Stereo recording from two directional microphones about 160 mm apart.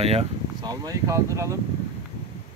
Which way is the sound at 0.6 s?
25° right (ahead or behind).